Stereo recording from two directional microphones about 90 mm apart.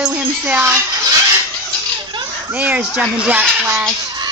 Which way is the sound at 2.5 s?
15° right (ahead or behind).